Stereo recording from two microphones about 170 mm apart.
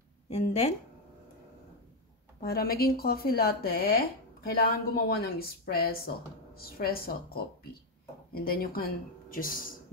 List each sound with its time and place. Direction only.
0.3 s speech: 45° left (ahead or behind)
2.4 s speech: 60° left (ahead or behind)